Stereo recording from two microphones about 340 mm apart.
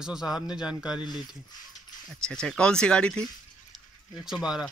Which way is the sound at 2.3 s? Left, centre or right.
Centre.